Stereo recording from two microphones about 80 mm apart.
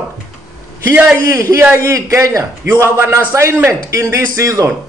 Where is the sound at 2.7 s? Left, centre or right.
Right.